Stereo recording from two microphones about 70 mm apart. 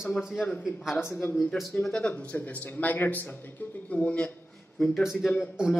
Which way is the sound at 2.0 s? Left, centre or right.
Left.